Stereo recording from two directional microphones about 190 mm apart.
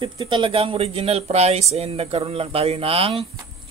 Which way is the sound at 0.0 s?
25° right (ahead or behind).